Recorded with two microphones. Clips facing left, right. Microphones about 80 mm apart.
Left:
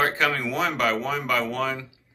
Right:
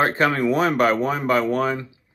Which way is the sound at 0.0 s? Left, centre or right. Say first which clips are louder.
Right 4 dB; right.